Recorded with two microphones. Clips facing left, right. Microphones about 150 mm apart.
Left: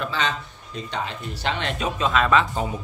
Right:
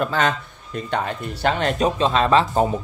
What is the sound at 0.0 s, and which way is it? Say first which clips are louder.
Speech: right 5 dB; 50° right (ahead or behind).